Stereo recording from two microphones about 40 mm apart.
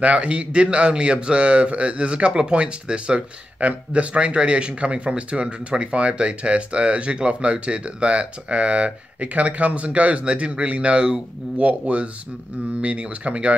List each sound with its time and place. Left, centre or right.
0.0 s a man's voice: right